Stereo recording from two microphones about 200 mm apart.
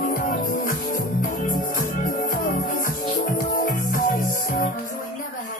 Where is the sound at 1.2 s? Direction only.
45° left (ahead or behind).